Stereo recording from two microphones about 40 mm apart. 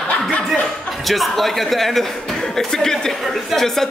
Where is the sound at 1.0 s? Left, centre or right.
Centre.